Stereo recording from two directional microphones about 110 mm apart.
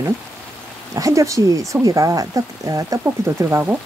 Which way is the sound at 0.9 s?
30° right (ahead or behind).